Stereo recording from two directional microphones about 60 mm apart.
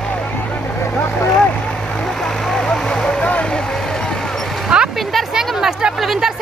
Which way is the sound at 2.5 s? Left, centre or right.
Centre.